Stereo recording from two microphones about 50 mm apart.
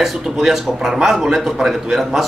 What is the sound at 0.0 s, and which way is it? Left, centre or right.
A man's voice, centre.